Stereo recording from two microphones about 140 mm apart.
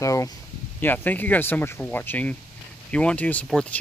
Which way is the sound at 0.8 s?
15° left (ahead or behind).